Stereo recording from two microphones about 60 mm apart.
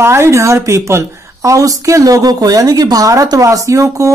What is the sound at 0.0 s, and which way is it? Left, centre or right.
Speech, right.